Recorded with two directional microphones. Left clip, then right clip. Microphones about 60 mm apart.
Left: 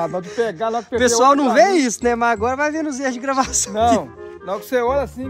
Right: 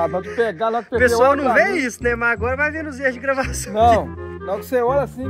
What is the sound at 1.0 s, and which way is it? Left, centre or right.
Speech, left.